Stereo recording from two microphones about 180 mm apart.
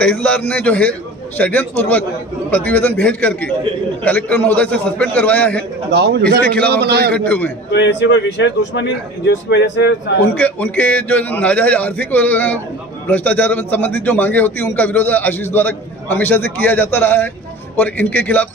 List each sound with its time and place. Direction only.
0.0 s a man's voice: 5° left (ahead or behind)
5.9 s a man's voice: 65° right (ahead or behind)
6.4 s a man's voice: 5° left (ahead or behind)
6.7 s a man's voice: 65° right (ahead or behind)
7.1 s a man's voice: 10° left (ahead or behind)
7.7 s speech: 80° left
10.2 s a man's voice: 10° left (ahead or behind)